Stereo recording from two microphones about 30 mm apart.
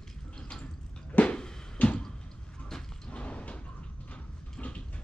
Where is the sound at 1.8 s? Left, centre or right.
Left.